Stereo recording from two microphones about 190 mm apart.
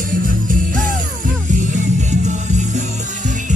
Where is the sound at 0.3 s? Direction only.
45° right (ahead or behind).